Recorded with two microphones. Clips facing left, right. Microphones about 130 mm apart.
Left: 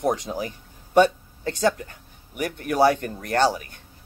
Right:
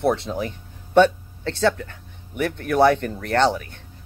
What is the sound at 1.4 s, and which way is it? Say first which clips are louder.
Speech: right 2 dB; 15° left (ahead or behind).